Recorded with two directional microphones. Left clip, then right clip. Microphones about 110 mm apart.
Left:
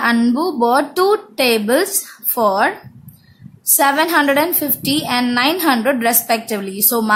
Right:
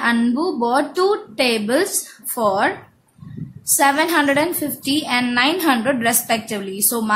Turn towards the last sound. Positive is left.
turn(degrees=30)  # may be behind; listen again after turning